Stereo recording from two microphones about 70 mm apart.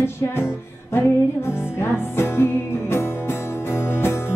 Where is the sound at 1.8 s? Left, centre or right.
Left.